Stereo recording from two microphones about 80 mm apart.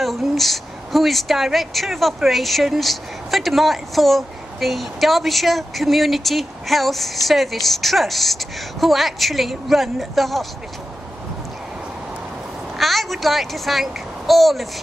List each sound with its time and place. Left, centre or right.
0.0 s speech: centre
12.7 s a child's voice: centre